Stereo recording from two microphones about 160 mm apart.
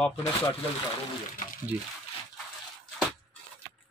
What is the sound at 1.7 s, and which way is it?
Speech, 10° right (ahead or behind).